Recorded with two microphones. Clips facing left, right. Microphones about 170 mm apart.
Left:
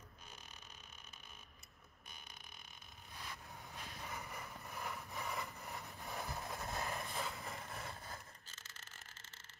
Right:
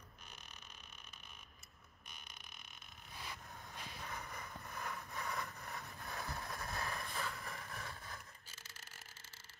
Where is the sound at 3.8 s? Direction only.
5° left (ahead or behind); by 8.2 s 25° left (ahead or behind).